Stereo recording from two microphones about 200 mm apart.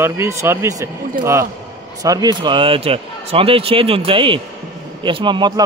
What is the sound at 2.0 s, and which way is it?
Speech, 20° right (ahead or behind).